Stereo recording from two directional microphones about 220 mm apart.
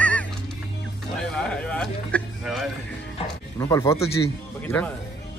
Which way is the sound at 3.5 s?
15° left (ahead or behind).